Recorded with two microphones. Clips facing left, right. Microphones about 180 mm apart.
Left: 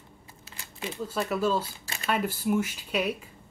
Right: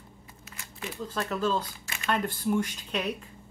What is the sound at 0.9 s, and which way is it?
Speech, 10° left (ahead or behind).